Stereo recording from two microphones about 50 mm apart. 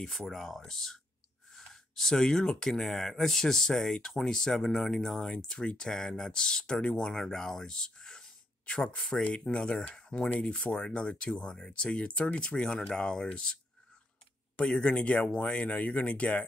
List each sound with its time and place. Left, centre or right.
0.0 s speech: centre; by 13.6 s left
14.8 s speech: left